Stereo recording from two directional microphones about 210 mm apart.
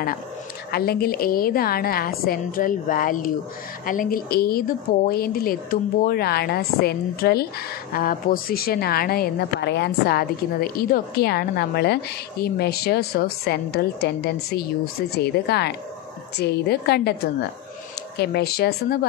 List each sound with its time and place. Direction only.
0.7 s a woman's voice: 45° left (ahead or behind)